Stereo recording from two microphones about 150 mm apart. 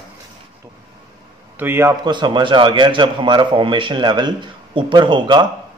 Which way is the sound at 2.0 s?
30° right (ahead or behind).